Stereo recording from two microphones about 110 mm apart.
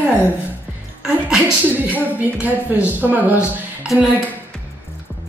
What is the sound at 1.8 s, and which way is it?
A woman's voice, 15° right (ahead or behind).